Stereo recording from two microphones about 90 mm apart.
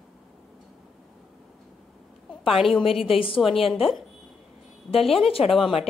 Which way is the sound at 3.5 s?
90° left.